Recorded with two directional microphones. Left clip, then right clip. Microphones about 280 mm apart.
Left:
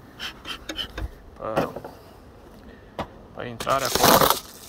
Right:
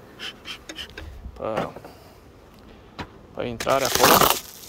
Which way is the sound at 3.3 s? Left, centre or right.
Centre.